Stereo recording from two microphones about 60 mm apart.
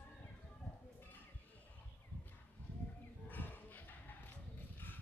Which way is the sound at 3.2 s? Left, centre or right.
Left.